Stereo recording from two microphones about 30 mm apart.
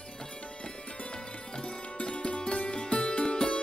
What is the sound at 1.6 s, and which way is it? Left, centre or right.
Music, left.